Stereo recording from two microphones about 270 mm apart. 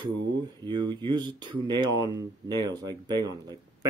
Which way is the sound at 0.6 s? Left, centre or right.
Centre.